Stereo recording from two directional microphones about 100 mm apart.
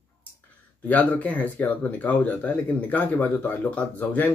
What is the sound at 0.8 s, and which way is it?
Speech, 15° left (ahead or behind).